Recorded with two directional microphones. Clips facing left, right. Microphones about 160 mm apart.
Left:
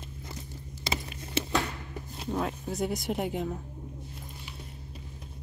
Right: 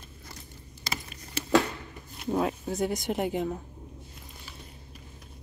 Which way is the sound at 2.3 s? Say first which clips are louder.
Right 4 dB; 5° right (ahead or behind).